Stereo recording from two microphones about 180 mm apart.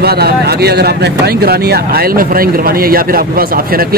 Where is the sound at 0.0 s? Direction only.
60° right (ahead or behind).